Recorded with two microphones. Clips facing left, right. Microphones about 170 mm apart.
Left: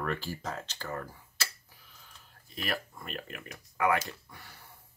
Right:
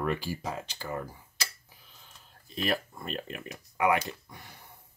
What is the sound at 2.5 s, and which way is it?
Speech, 25° right (ahead or behind).